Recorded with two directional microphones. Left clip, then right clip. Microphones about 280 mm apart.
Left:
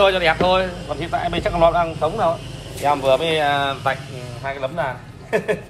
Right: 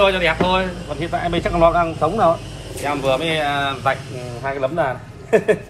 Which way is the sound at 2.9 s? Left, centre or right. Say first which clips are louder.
Left 2 dB; centre.